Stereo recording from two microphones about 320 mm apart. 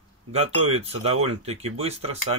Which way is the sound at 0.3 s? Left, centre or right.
Centre.